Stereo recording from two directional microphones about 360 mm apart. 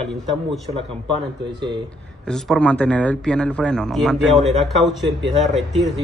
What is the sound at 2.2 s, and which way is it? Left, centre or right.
Speech, centre.